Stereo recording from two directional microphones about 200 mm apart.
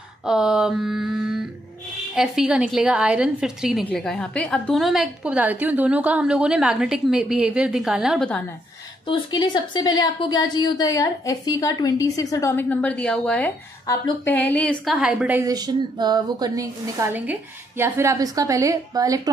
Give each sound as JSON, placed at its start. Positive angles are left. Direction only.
{"t": 0.2, "sound": "a woman's voice", "side_deg": -5}
{"t": 9.0, "sound": "a woman's voice", "side_deg": 25}